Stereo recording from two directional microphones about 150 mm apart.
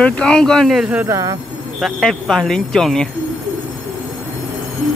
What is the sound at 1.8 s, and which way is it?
Speech, centre (ahead or behind).